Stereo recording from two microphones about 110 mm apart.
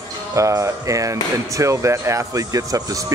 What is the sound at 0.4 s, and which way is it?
Speech, 30° right (ahead or behind).